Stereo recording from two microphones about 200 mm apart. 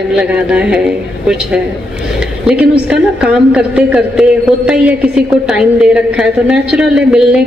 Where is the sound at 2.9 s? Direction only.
5° right (ahead or behind).